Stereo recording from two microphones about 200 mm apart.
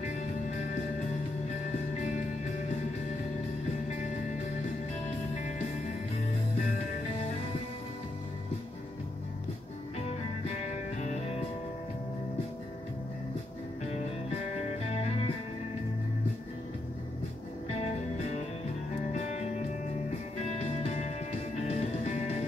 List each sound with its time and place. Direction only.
9.9 s music: 30° left (ahead or behind)
14.9 s music: 30° left (ahead or behind)
20.4 s music: 30° left (ahead or behind)